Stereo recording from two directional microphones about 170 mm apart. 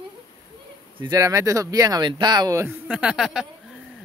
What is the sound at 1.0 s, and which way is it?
Speech, 20° right (ahead or behind).